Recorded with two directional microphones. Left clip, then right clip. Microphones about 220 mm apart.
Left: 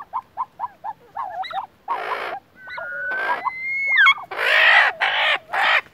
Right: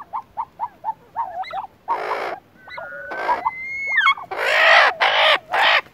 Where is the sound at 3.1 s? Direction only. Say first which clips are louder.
Right 3 dB; 20° right (ahead or behind).